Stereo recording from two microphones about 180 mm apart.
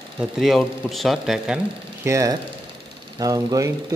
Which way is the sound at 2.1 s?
20° right (ahead or behind).